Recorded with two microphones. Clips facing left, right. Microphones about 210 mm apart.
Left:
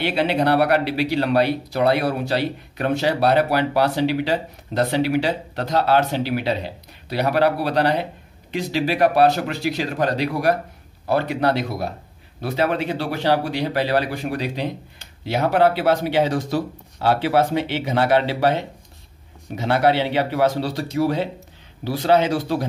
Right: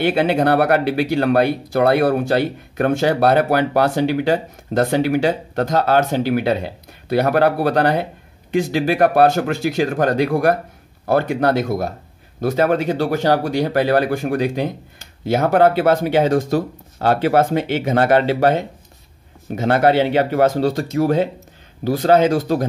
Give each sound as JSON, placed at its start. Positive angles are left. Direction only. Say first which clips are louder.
{"t": 0.0, "sound": "speech", "louder": "right 4 dB", "side_deg": -50}